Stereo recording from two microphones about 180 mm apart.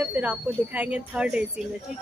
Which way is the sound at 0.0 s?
10° right (ahead or behind).